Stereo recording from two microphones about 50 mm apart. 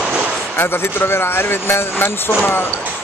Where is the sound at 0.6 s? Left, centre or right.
Left.